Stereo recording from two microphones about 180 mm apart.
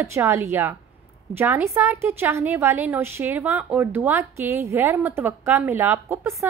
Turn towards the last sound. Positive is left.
turn(degrees=-15)  # may be behind; listen again after turning